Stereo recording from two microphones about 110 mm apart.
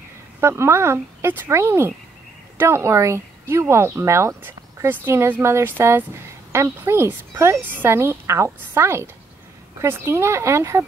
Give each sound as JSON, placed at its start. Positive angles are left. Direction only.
{"t": 0.4, "sound": "speech", "side_deg": -25}